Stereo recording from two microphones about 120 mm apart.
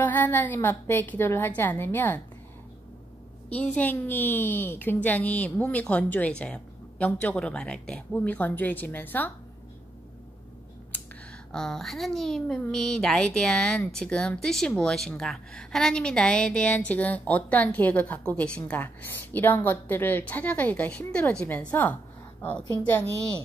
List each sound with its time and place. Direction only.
0.0 s a woman's voice: 15° left (ahead or behind)
3.4 s a woman's voice: 15° left (ahead or behind)
11.5 s a woman's voice: 5° left (ahead or behind)